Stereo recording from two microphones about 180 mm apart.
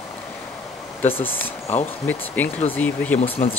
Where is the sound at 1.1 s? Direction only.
10° left (ahead or behind).